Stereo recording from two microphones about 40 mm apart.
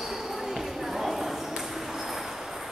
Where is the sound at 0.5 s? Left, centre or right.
Centre.